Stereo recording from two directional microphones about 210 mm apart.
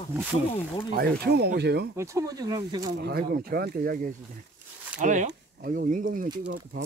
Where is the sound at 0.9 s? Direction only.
50° right (ahead or behind).